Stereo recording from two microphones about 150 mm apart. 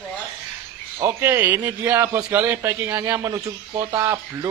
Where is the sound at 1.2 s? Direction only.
10° right (ahead or behind).